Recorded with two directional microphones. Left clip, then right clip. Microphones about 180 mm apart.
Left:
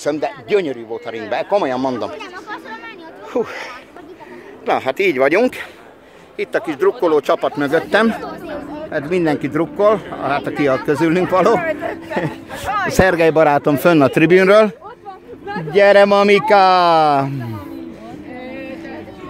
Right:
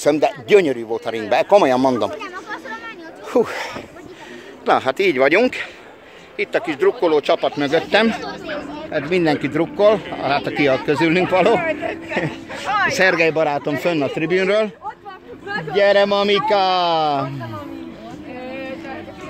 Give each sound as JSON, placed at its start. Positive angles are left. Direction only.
{"t": 0.0, "sound": "a man's voice", "side_deg": -40}
{"t": 3.3, "sound": "a man's voice", "side_deg": -30}
{"t": 4.6, "sound": "a man's voice", "side_deg": -20}
{"t": 4.9, "sound": "a man's voice", "side_deg": 0}
{"t": 6.9, "sound": "speech", "side_deg": 15}
{"t": 8.1, "sound": "speech", "side_deg": 50}
{"t": 8.9, "sound": "a man's voice", "side_deg": -5}
{"t": 10.8, "sound": "speech", "side_deg": 10}
{"t": 12.6, "sound": "speech", "side_deg": 60}
{"t": 12.9, "sound": "speech", "side_deg": 25}
{"t": 13.3, "sound": "speech", "side_deg": 45}
{"t": 13.8, "sound": "speech", "side_deg": 60}
{"t": 14.3, "sound": "speech", "side_deg": 45}
{"t": 15.7, "sound": "speech", "side_deg": 40}